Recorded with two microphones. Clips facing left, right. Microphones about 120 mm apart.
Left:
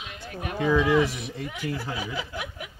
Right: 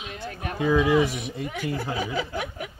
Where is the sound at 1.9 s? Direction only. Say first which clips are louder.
Right 5 dB; 50° right (ahead or behind).